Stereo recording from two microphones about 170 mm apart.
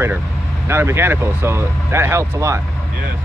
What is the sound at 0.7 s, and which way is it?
Speech, 15° right (ahead or behind).